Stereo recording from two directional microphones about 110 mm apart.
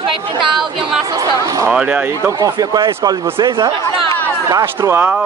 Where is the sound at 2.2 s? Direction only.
30° right (ahead or behind).